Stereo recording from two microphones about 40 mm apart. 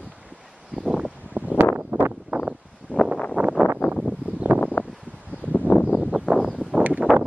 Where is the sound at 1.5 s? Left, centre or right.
Right.